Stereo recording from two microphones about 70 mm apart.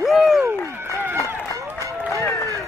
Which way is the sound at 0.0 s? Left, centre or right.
Centre.